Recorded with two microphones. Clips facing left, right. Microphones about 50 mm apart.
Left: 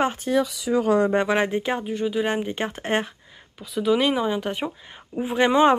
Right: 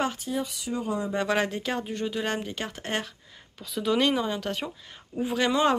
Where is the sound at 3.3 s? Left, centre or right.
Centre.